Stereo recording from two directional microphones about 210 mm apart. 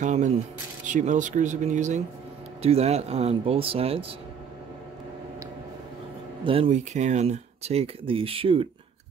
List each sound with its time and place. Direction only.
0.0 s speech: 35° right (ahead or behind)
6.4 s speech: 25° right (ahead or behind)